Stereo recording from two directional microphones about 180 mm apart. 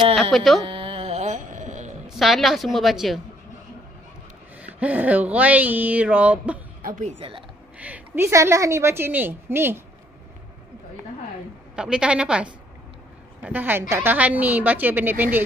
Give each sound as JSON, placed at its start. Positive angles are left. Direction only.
{"t": 0.1, "sound": "carnatic music", "side_deg": 0}
{"t": 0.7, "sound": "music", "side_deg": -30}
{"t": 2.0, "sound": "a woman's voice", "side_deg": 0}
{"t": 4.6, "sound": "speech", "side_deg": -10}
{"t": 6.8, "sound": "a woman's voice", "side_deg": -45}
{"t": 7.8, "sound": "speech", "side_deg": -10}
{"t": 11.7, "sound": "a woman's voice", "side_deg": -5}